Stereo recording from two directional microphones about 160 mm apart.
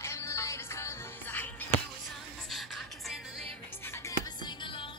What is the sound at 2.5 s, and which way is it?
Music, centre (ahead or behind).